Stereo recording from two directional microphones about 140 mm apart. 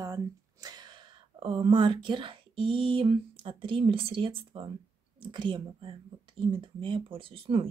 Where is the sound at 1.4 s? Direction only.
35° right (ahead or behind).